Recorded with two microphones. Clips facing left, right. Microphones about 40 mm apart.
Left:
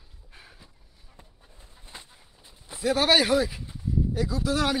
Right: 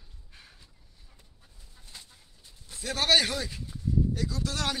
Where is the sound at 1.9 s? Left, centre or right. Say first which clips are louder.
Left 4 dB; left.